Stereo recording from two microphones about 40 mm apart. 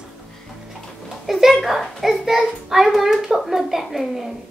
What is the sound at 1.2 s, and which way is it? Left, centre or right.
A child's voice, centre.